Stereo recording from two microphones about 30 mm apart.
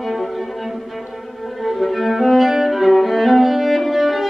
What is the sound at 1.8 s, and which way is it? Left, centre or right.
Music, centre.